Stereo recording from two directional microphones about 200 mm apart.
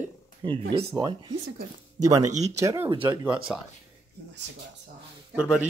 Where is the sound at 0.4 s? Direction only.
25° right (ahead or behind); by 3.5 s 5° right (ahead or behind).